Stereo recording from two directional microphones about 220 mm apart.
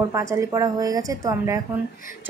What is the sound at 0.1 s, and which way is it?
Speech, 15° right (ahead or behind).